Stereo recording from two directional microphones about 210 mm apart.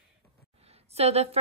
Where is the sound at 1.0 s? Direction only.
30° right (ahead or behind).